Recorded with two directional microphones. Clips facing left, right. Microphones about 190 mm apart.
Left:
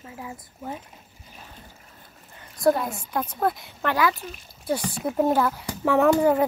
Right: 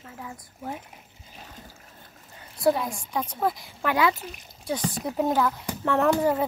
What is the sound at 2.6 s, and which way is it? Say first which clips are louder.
Speech: left 2 dB; centre (ahead or behind).